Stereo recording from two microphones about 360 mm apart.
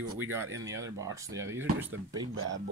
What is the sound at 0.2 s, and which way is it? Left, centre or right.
Speech, centre.